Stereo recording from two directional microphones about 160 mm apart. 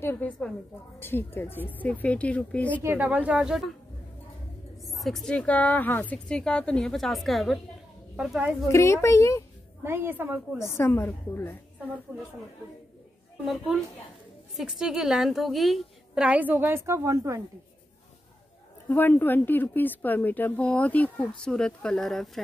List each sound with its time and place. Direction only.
0.0 s a woman's voice: 10° left (ahead or behind)
2.8 s a woman's voice: 10° right (ahead or behind)
4.8 s a woman's voice: centre (ahead or behind)
8.6 s speech: 20° left (ahead or behind)
9.8 s a woman's voice: 15° right (ahead or behind)
10.6 s speech: 15° left (ahead or behind)
12.1 s a woman's voice: 15° right (ahead or behind)
14.6 s a woman's voice: 5° right (ahead or behind); by 17.4 s 20° right (ahead or behind)
18.9 s speech: 10° left (ahead or behind)